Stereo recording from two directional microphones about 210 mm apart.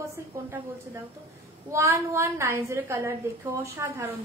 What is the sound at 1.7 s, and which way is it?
A woman's voice, 15° right (ahead or behind).